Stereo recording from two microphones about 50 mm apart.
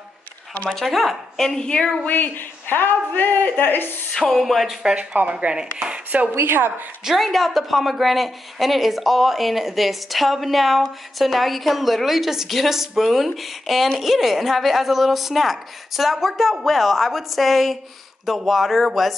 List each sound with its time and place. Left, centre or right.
0.7 s a woman's voice: centre
2.0 s speech: left
4.2 s a woman's voice: centre
5.3 s speech: centre
6.4 s a woman's voice: right
7.1 s a woman's voice: centre